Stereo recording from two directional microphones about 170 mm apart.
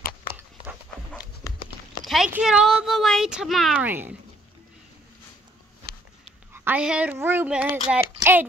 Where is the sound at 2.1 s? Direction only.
Centre (ahead or behind).